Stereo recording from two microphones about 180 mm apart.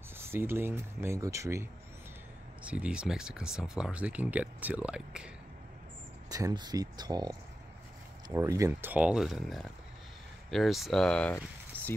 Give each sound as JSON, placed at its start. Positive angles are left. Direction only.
{"t": 0.2, "sound": "speech", "side_deg": -15}
{"t": 6.3, "sound": "speech", "side_deg": -20}